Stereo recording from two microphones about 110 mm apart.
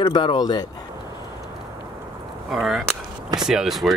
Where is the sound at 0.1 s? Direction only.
40° left (ahead or behind).